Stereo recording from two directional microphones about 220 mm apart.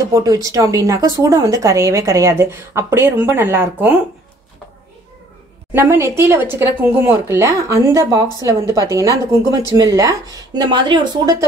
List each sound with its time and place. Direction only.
0.1 s speech: 15° right (ahead or behind)
5.7 s speech: 10° right (ahead or behind)